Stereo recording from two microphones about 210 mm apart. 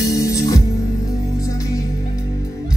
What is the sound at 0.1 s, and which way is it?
Music, 15° left (ahead or behind).